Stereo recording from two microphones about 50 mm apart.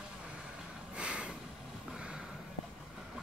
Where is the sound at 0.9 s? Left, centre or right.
Right.